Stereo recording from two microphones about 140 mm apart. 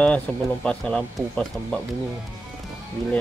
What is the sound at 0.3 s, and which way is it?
Speech, 10° left (ahead or behind).